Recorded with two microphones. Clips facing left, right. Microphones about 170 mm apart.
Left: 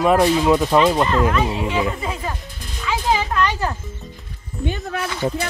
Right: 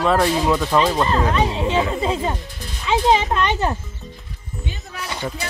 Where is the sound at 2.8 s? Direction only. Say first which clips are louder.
Right 4 dB; 25° right (ahead or behind).